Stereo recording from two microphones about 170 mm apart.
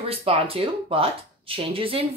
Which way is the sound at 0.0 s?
35° right (ahead or behind).